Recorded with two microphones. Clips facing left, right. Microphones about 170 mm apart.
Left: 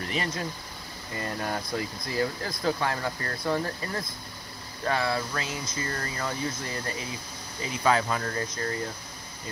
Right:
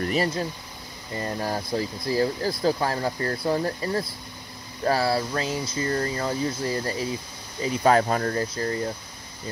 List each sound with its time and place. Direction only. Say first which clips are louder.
0.0 s speech: right 6 dB; 35° right (ahead or behind)